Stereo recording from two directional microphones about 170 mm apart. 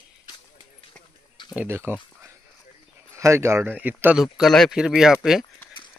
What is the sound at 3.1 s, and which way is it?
Speech, 15° right (ahead or behind).